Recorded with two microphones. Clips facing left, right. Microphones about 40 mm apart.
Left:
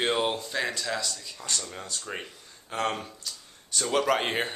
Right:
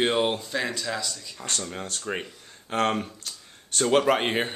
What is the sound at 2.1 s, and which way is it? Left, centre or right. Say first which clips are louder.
Speech: right 6 dB; centre.